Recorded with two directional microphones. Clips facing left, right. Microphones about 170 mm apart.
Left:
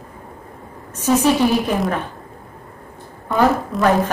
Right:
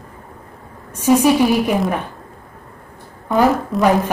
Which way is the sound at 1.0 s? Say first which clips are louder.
Right 3 dB; 10° right (ahead or behind).